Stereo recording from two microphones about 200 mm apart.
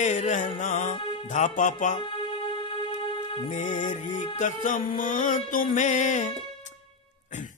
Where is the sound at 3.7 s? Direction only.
35° left (ahead or behind).